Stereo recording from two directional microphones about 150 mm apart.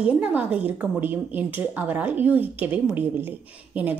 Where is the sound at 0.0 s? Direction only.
10° right (ahead or behind).